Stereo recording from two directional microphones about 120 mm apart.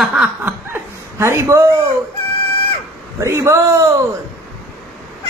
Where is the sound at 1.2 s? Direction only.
25° right (ahead or behind).